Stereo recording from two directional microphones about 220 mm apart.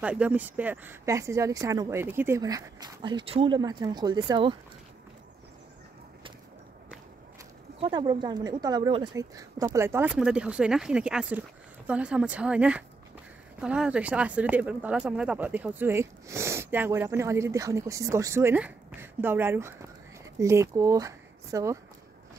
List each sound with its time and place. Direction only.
0.0 s speech: 5° right (ahead or behind)
7.8 s speech: 20° right (ahead or behind)